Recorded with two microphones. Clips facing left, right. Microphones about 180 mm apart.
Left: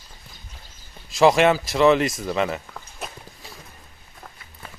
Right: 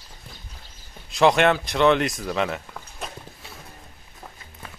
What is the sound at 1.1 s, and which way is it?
Speech, centre (ahead or behind).